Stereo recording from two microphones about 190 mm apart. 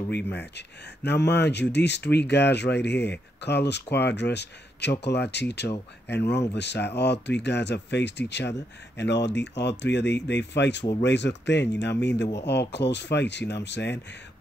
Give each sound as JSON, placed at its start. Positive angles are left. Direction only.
{"t": 0.1, "sound": "speech", "side_deg": 65}